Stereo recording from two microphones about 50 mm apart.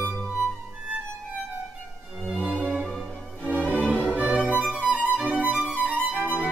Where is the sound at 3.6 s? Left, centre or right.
Left.